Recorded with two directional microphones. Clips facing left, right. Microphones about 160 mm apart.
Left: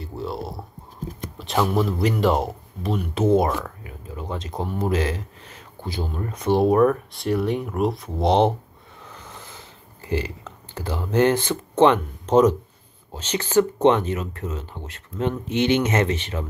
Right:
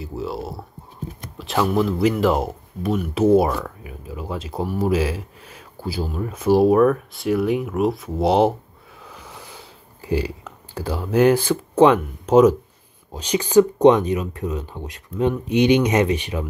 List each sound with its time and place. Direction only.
0.0 s speech: centre (ahead or behind)
9.0 s a sound: 10° right (ahead or behind)
13.1 s speech: 15° right (ahead or behind)